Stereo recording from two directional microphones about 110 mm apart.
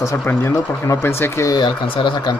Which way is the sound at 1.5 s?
45° left (ahead or behind).